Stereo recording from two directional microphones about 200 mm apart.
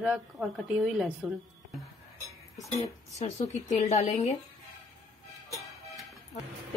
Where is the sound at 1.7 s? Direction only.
Centre (ahead or behind).